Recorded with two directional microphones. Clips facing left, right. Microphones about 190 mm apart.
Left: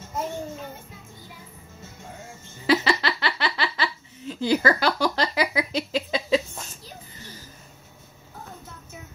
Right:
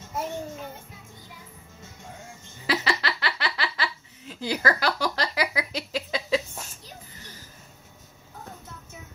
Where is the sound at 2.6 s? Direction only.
25° left (ahead or behind).